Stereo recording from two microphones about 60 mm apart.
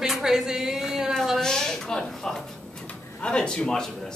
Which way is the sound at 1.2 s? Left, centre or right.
Centre.